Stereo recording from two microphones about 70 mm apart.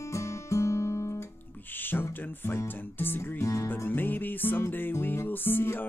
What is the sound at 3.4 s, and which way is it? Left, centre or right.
Music, left.